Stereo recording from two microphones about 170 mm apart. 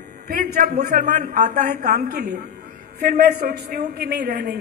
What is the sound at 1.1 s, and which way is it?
Speech, 45° right (ahead or behind).